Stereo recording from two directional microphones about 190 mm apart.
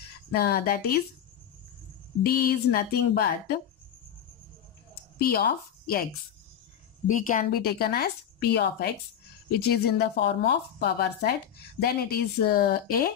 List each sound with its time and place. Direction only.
0.3 s a woman's voice: 55° left (ahead or behind)
2.2 s a woman's voice: 55° left (ahead or behind)
5.2 s speech: 55° left (ahead or behind)
7.1 s a woman's voice: 45° left (ahead or behind)